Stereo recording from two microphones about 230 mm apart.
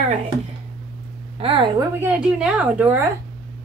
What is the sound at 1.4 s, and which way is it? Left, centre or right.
Speech, right.